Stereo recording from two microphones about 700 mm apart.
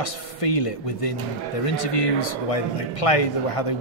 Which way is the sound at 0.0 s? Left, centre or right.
Left.